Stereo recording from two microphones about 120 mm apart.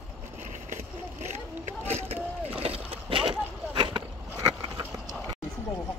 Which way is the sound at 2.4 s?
55° right (ahead or behind).